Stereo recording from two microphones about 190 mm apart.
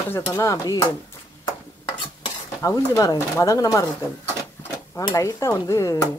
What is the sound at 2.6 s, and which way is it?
Speech, 15° left (ahead or behind).